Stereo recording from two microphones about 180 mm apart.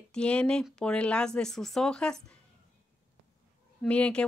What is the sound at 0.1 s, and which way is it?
Speech, 5° left (ahead or behind).